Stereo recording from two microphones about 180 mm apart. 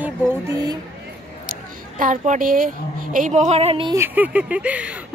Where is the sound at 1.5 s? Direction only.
50° right (ahead or behind); by 3.9 s 30° right (ahead or behind).